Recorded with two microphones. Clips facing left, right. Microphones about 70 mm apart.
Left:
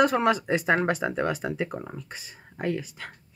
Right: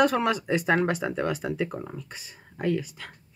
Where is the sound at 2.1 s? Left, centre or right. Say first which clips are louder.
Left 2 dB; left.